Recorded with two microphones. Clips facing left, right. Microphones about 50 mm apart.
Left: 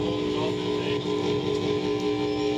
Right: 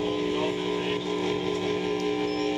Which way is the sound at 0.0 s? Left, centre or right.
Centre.